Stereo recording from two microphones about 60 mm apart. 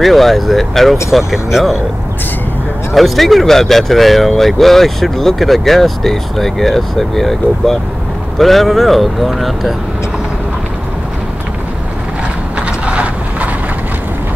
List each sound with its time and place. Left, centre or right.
0.0 s speech: centre
2.9 s speech: centre
12.5 s vehicle: right